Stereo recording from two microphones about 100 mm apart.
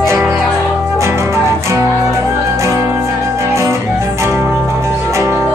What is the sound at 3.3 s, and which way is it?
Music, 30° right (ahead or behind).